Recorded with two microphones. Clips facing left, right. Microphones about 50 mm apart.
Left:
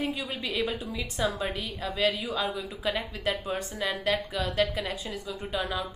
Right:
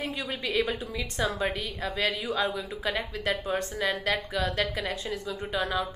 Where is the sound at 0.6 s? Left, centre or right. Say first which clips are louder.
Right 2 dB; centre.